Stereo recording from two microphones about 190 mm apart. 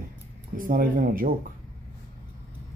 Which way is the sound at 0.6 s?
45° right (ahead or behind).